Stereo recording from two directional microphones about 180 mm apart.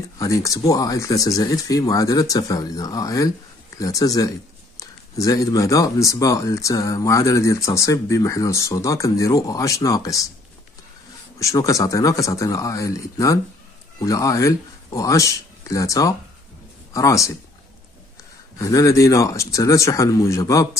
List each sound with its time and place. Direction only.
0.2 s speech: 20° left (ahead or behind)
11.3 s speech: 15° left (ahead or behind)
18.6 s speech: 20° left (ahead or behind)